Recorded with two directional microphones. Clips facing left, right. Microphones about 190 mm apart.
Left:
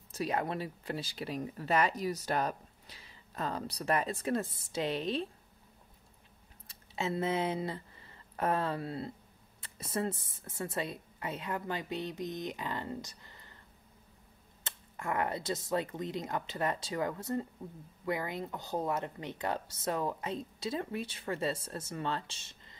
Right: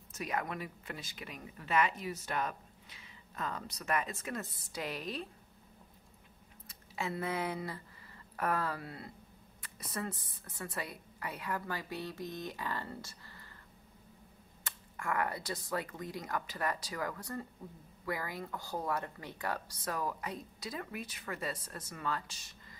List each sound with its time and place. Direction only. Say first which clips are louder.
0.1 s speech: left 4 dB; 30° left (ahead or behind)
6.7 s speech: left 4 dB; 25° left (ahead or behind)
14.6 s speech: left 1 dB; 25° left (ahead or behind)